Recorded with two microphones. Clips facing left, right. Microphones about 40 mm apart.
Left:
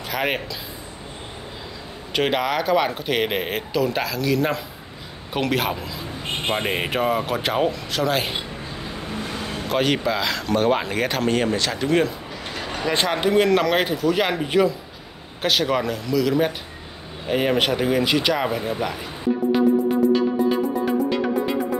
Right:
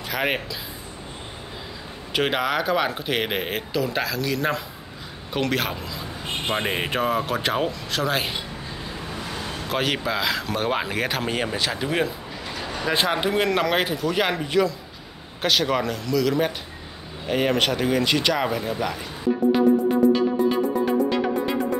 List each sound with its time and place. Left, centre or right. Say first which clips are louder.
0.1 s a man's voice: left 1 dB; centre
2.1 s a man's voice: left 1 dB; centre
9.7 s a man's voice: left 4 dB; centre
14.4 s speech: left 4 dB; centre
15.4 s a man's voice: left 1 dB; centre
19.5 s music: left 1 dB; centre